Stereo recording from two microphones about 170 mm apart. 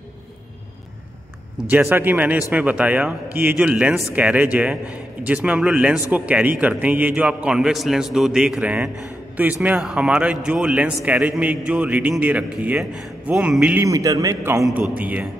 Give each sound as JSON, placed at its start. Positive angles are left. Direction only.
{"t": 1.7, "sound": "a man's voice", "side_deg": -10}
{"t": 13.8, "sound": "a man's voice", "side_deg": -20}